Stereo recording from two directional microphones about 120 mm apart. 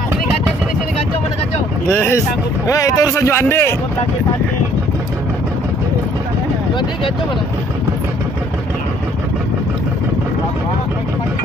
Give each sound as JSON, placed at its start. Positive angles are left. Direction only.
{"t": 1.9, "sound": "speech", "side_deg": 20}